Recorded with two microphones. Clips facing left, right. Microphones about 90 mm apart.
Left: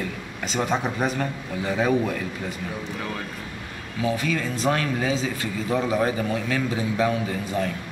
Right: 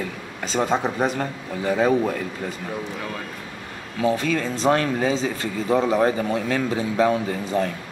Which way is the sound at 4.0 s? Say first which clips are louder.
Right 3 dB; 30° right (ahead or behind).